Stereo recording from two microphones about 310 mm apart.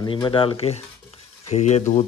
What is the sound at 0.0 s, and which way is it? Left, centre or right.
Speech, centre.